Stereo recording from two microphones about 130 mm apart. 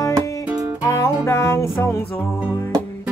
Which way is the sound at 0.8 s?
20° left (ahead or behind).